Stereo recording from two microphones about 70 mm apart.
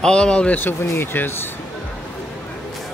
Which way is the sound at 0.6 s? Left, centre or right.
Left.